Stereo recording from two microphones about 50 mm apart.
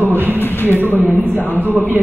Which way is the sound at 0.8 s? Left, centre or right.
Right.